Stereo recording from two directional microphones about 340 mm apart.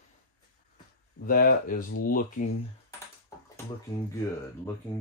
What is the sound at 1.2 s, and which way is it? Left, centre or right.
Speech, left.